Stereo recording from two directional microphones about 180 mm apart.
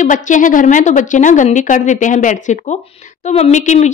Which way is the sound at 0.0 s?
45° left (ahead or behind).